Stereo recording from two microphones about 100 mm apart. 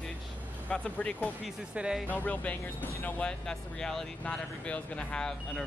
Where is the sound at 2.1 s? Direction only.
15° left (ahead or behind).